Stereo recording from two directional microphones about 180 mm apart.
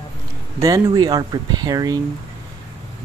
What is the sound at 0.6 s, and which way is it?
Speech, 20° right (ahead or behind).